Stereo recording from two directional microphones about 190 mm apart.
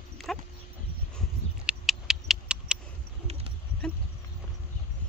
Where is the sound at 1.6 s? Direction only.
Centre (ahead or behind).